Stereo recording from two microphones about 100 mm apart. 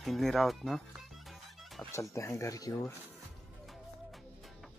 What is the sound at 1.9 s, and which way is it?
Speech, 30° left (ahead or behind).